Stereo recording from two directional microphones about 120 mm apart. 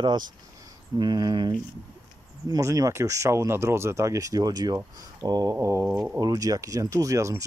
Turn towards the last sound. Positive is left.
turn(degrees=-25)  # may be behind; listen again after turning